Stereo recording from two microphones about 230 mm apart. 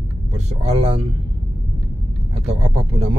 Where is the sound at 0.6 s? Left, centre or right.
Right.